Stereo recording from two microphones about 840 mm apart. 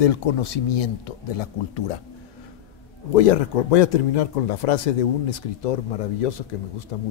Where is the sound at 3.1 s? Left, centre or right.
Left.